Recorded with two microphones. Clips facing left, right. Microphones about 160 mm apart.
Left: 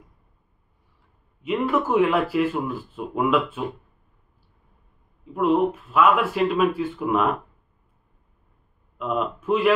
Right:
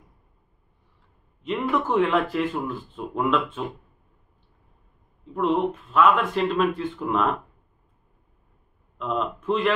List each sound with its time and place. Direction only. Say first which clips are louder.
1.4 s speech: left 2 dB; 10° left (ahead or behind)
5.3 s speech: left 3 dB; 5° left (ahead or behind)
8.9 s speech: left 1 dB; 5° left (ahead or behind)